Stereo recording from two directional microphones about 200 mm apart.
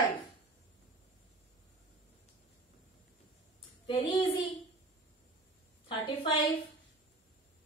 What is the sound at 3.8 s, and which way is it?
Speech, 25° left (ahead or behind).